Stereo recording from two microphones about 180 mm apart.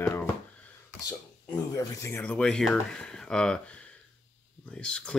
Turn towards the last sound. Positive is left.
turn(degrees=5)  # may be behind; listen again after turning